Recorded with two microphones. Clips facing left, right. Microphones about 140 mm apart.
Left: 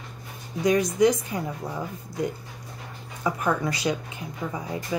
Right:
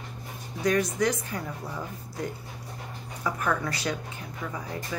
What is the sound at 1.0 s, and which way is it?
Speech, 15° left (ahead or behind).